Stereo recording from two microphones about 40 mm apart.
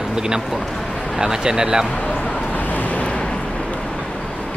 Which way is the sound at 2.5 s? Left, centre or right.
Left.